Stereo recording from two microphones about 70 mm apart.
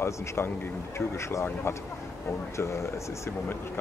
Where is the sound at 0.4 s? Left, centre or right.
Left.